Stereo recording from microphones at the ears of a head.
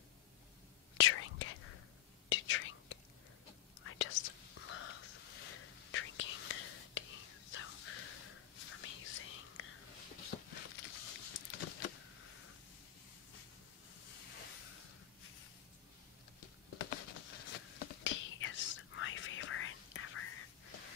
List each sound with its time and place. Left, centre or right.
0.9 s whispering: left
14.0 s a sound: left
16.3 s patter: left